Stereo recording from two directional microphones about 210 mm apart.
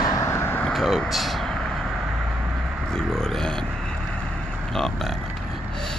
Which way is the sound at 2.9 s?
Centre (ahead or behind).